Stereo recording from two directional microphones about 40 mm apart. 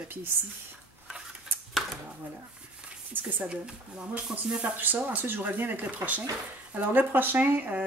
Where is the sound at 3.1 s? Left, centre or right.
Right.